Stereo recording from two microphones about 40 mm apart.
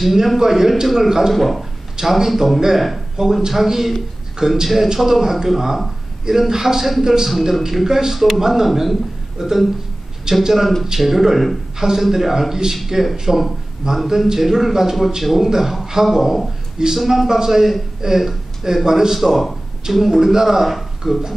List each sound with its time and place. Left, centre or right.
0.0 s a man's voice: centre
1.3 s speech: centre
2.0 s a man's voice: centre
16.7 s speech: centre
17.0 s speech: centre
17.3 s a man's voice: centre